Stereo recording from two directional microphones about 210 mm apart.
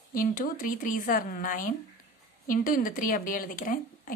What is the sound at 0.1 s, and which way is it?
Speech, 40° left (ahead or behind).